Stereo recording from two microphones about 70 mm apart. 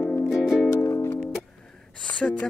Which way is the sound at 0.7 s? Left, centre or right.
Left.